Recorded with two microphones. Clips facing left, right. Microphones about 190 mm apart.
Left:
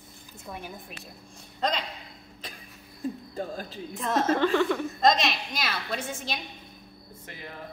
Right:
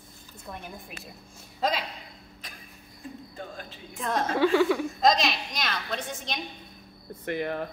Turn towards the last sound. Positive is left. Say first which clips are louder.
# right 13 dB
turn(degrees=-65)  # may be behind; listen again after turning